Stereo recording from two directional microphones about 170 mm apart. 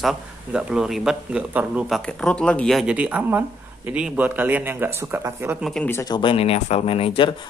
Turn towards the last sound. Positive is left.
turn(degrees=35)  # may be behind; listen again after turning